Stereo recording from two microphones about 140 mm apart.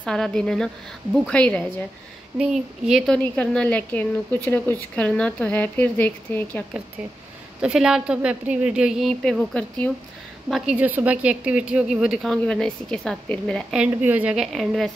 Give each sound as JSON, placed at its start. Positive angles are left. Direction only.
{"t": 0.0, "sound": "a woman's voice", "side_deg": 5}
{"t": 2.3, "sound": "a woman's voice", "side_deg": -5}
{"t": 3.3, "sound": "a woman's voice", "side_deg": 10}
{"t": 7.6, "sound": "a woman's voice", "side_deg": -5}
{"t": 10.5, "sound": "a woman's voice", "side_deg": -5}
{"t": 13.7, "sound": "a woman's voice", "side_deg": -10}